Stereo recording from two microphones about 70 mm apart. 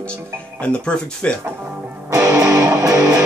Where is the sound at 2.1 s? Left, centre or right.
Right.